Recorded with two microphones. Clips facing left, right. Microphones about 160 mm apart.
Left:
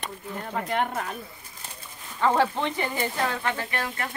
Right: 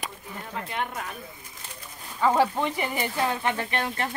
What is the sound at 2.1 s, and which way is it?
Speech, 10° right (ahead or behind).